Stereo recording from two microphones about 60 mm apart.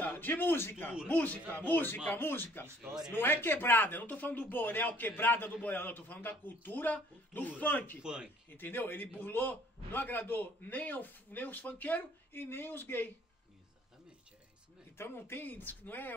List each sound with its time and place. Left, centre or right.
0.0 s a man's voice: left
1.0 s a man's voice: left
2.8 s speech: centre
3.1 s a man's voice: left
8.0 s speech: centre
8.5 s a man's voice: left
15.0 s a man's voice: left